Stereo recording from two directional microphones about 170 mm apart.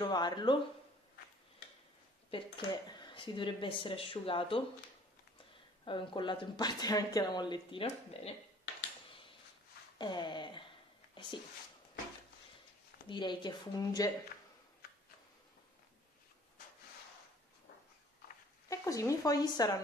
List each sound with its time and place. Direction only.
0.0 s speech: 25° left (ahead or behind)
2.3 s speech: 25° left (ahead or behind)
5.9 s speech: 30° left (ahead or behind)
9.9 s speech: 25° left (ahead or behind)
13.1 s speech: 25° left (ahead or behind)
18.7 s speech: 20° left (ahead or behind)